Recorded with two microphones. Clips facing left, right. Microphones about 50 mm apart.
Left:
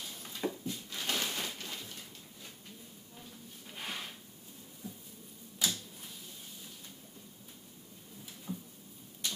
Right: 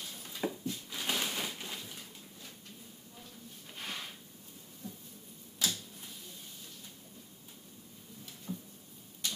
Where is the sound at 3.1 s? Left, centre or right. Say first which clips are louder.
Left 1 dB; centre.